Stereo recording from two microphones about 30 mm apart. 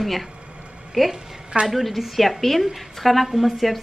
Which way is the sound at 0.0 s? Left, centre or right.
Centre.